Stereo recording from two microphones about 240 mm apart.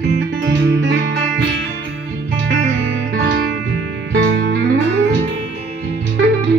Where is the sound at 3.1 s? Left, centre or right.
Right.